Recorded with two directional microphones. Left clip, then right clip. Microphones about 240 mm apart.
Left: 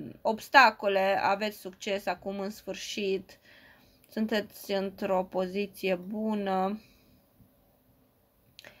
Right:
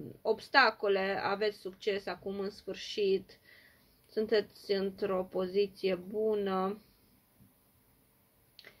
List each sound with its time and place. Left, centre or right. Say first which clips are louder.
0.2 s speech: left 6 dB; left